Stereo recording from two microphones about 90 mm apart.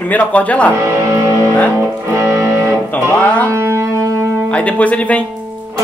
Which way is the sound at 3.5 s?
35° right (ahead or behind).